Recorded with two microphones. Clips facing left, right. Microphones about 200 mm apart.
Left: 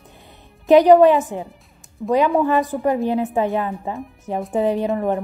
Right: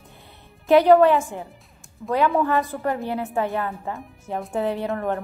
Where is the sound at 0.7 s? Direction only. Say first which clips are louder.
Left 3 dB; 15° left (ahead or behind).